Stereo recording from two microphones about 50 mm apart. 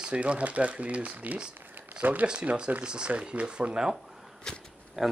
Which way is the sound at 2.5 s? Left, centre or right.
Right.